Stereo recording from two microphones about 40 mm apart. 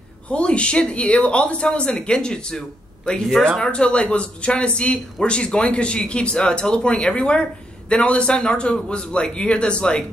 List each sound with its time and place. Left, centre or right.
0.3 s speech: left